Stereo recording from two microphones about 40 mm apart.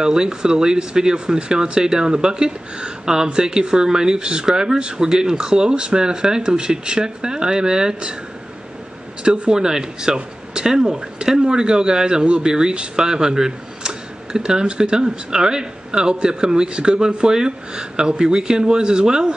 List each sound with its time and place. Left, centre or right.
0.0 s speech: centre
9.2 s speech: right